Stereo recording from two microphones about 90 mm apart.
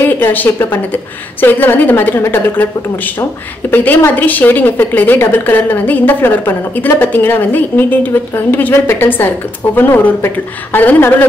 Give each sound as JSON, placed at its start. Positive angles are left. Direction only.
{"t": 0.0, "sound": "a woman's voice", "side_deg": 20}
{"t": 3.7, "sound": "a woman's voice", "side_deg": 20}